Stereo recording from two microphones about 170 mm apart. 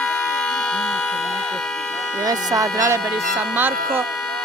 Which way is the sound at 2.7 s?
15° right (ahead or behind).